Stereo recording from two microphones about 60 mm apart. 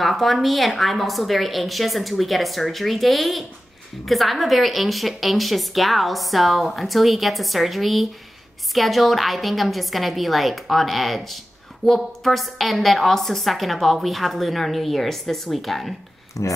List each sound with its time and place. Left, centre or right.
0.0 s a woman's voice: centre
16.4 s speech: left